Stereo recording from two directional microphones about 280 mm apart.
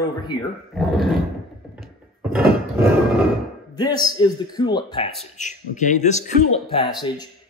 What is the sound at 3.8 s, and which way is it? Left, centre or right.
Speech, centre.